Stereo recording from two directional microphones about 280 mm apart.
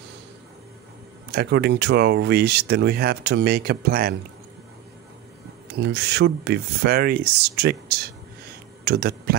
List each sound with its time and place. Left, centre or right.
1.3 s speech: right
5.8 s speech: right